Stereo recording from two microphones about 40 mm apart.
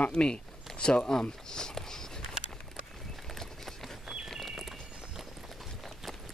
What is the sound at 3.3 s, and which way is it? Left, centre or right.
Clip-clop, centre.